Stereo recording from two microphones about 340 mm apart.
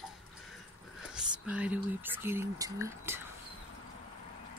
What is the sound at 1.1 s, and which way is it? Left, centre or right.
Speech, centre.